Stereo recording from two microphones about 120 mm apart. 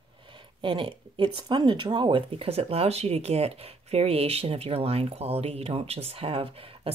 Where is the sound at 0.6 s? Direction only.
45° right (ahead or behind).